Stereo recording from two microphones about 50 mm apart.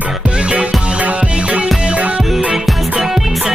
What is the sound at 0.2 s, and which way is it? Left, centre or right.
Music, right.